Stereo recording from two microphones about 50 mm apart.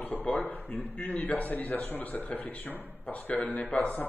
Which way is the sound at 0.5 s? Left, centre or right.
Left.